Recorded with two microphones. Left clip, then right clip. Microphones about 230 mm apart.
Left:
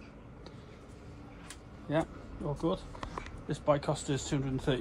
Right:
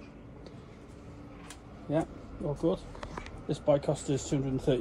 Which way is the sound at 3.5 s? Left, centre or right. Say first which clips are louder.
Right 3 dB; centre.